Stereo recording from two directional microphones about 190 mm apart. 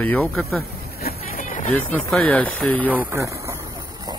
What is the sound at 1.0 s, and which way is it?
Vehicle, 45° left (ahead or behind).